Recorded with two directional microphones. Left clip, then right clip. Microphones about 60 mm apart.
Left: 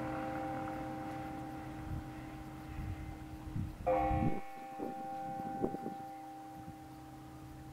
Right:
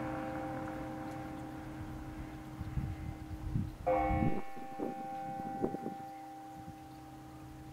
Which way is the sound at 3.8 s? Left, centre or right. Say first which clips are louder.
Right 1 dB; centre.